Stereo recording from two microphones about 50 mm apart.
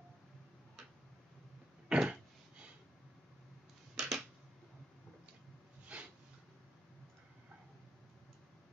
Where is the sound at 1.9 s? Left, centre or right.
Centre.